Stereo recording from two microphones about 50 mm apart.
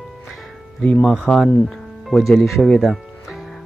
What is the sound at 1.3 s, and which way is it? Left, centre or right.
Speech, centre.